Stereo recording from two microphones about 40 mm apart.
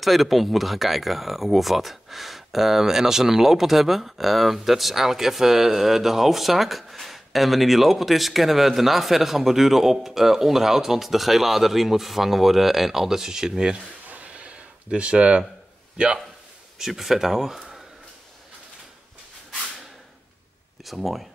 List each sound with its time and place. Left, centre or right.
0.0 s speech: centre
14.0 s a sound: right
16.7 s speech: centre
20.8 s speech: centre